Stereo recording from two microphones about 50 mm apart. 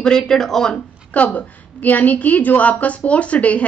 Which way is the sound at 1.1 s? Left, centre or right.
Left.